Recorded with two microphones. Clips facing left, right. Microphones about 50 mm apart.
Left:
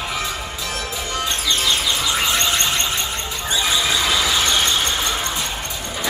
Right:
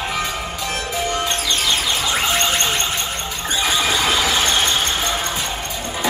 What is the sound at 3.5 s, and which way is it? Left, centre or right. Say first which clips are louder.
Squeal: right 1 dB; right.